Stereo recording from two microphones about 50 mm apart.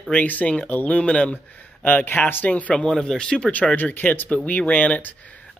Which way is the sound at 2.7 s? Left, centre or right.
Centre.